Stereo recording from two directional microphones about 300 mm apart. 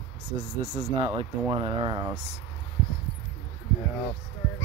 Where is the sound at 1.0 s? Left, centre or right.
Centre.